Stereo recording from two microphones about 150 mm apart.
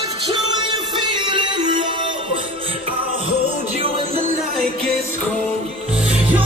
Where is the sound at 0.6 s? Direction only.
30° right (ahead or behind).